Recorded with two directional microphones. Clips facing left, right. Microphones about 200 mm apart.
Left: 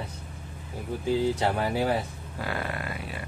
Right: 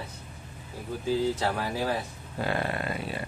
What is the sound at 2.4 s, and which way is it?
Speech, 30° right (ahead or behind).